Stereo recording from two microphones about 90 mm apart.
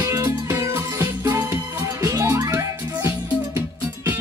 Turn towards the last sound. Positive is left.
turn(degrees=-40)  # may be behind; listen again after turning